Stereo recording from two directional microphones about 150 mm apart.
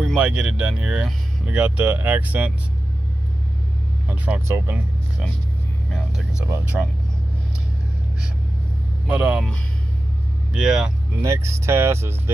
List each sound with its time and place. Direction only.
0.0 s speech: 5° right (ahead or behind)
4.1 s speech: 15° right (ahead or behind)
5.9 s vehicle: centre (ahead or behind)
9.0 s speech: 10° right (ahead or behind)
10.5 s speech: 5° right (ahead or behind)
11.1 s speech: 20° right (ahead or behind)